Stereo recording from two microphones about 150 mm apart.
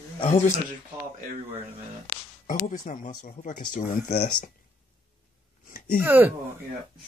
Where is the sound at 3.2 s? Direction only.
70° left (ahead or behind).